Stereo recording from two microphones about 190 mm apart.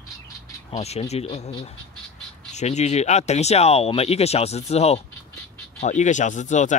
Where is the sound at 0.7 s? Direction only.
35° left (ahead or behind).